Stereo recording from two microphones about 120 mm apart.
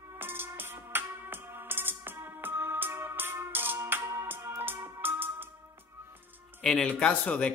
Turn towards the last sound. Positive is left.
turn(degrees=10)  # may be behind; listen again after turning